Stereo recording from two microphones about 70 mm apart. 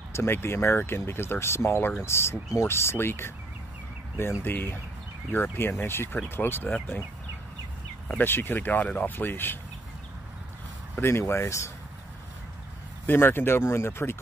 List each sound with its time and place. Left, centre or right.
0.1 s speech: left
8.2 s speech: left
11.0 s speech: left
13.0 s speech: left